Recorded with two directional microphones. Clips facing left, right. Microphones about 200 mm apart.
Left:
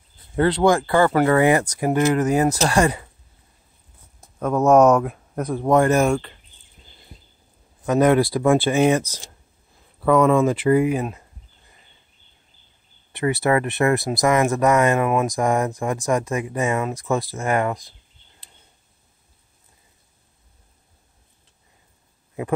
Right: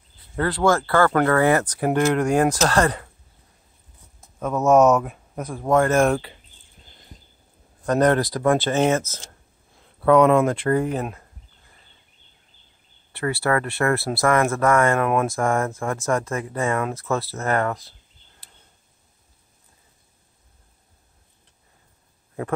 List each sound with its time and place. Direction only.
0.4 s speech: 20° left (ahead or behind)
4.9 s speech: centre (ahead or behind)
5.6 s speech: 15° left (ahead or behind)
5.9 s speech: 5° right (ahead or behind)
7.8 s speech: 5° left (ahead or behind)
10.0 s speech: centre (ahead or behind)
13.1 s speech: 20° left (ahead or behind)